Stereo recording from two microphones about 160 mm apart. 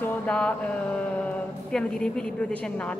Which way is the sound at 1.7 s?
5° left (ahead or behind).